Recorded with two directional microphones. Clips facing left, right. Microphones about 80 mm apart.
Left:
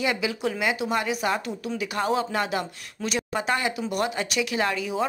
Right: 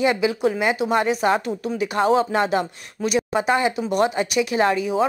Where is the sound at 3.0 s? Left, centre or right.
Centre.